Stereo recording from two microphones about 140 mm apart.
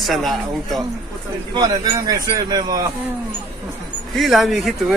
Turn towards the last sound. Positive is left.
turn(degrees=0)  # may be behind; listen again after turning